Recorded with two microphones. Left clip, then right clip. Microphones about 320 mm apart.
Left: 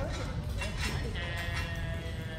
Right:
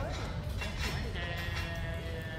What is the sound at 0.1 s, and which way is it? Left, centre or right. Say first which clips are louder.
Music: left 1 dB; left.